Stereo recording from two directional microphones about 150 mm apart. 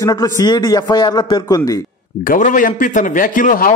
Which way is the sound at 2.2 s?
60° left (ahead or behind).